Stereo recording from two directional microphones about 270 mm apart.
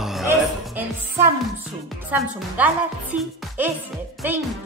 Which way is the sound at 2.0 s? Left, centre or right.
Centre.